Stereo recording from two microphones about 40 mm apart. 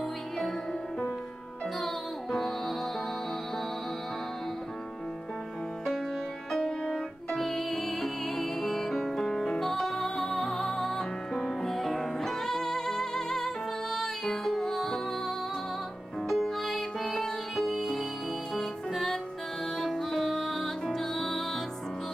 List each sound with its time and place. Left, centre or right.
0.4 s music: centre
6.5 s music: centre